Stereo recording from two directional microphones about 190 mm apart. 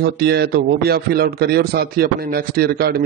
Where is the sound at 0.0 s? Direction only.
60° right (ahead or behind).